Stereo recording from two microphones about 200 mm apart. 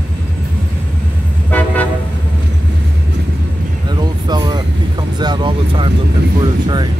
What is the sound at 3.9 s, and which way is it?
Vehicle, 20° right (ahead or behind).